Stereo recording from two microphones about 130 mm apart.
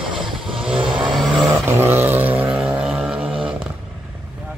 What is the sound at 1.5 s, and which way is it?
Vehicle, 20° right (ahead or behind).